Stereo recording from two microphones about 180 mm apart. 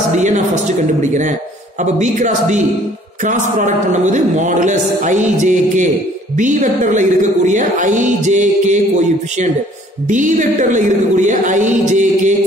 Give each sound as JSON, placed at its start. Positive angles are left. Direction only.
{"t": 0.1, "sound": "a woman's voice", "side_deg": -40}
{"t": 1.8, "sound": "a man's voice", "side_deg": -45}
{"t": 10.0, "sound": "a man's voice", "side_deg": -45}